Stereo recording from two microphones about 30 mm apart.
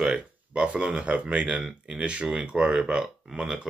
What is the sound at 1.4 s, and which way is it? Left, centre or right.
Speech, right.